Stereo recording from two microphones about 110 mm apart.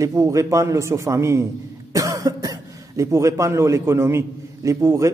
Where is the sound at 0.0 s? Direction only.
30° right (ahead or behind).